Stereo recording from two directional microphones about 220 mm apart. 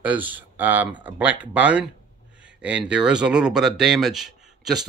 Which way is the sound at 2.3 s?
5° right (ahead or behind).